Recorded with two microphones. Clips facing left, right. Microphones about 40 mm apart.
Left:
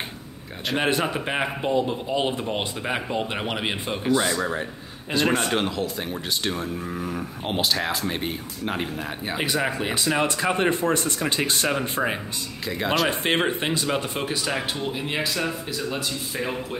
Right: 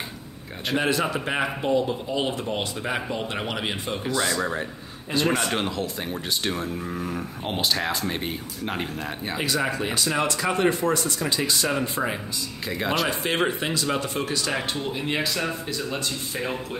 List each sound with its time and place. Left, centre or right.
0.7 s speech: left
1.2 s speech: centre
4.4 s speech: centre
9.6 s speech: left
12.6 s speech: centre
13.1 s speech: left
14.2 s speech: centre
14.5 s speech: centre